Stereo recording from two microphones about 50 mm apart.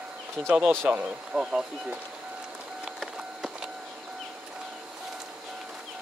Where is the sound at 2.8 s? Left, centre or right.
Centre.